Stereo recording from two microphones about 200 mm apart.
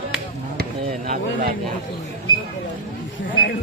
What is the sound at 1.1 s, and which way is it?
Speech, 45° right (ahead or behind).